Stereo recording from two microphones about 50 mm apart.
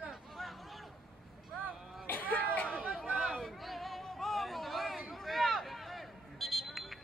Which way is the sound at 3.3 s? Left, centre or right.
Centre.